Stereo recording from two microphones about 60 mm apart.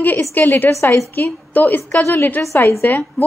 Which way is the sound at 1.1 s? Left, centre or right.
Left.